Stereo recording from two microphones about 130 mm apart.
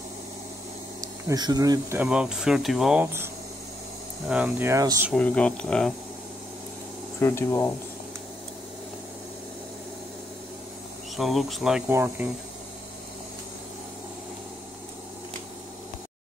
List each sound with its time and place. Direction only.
1.0 s speech: 30° right (ahead or behind)
2.0 s speech: 5° right (ahead or behind)
3.0 s speech: 20° right (ahead or behind)
4.3 s speech: 10° right (ahead or behind)
5.1 s speech: 10° left (ahead or behind)
7.2 s speech: 20° left (ahead or behind)
11.1 s speech: centre (ahead or behind)
11.9 s speech: 20° right (ahead or behind)